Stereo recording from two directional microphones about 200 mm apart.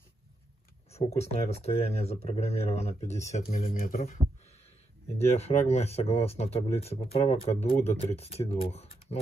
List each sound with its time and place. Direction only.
0.9 s speech: 30° left (ahead or behind)
5.1 s speech: 30° left (ahead or behind)